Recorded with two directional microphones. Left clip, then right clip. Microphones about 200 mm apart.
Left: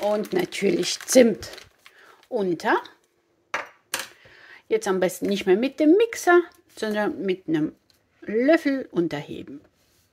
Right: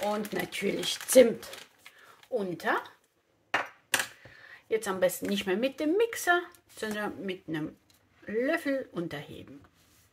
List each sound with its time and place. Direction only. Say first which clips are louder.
0.1 s speech: left 8 dB; 40° left (ahead or behind)
4.4 s speech: left 7 dB; 45° left (ahead or behind)